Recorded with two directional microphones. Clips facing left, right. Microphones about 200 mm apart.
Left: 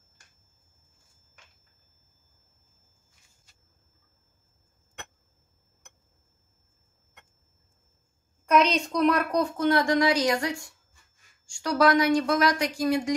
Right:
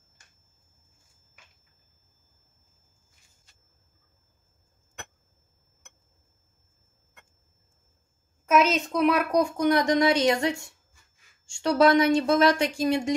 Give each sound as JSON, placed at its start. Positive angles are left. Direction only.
{"t": 8.5, "sound": "a woman's voice", "side_deg": -5}